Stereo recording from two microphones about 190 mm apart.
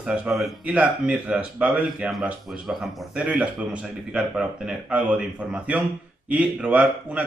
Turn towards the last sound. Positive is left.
turn(degrees=-5)  # may be behind; listen again after turning